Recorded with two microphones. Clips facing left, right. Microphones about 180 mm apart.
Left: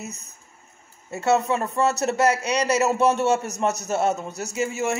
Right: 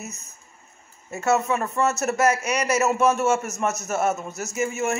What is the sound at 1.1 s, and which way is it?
A man's voice, 30° left (ahead or behind).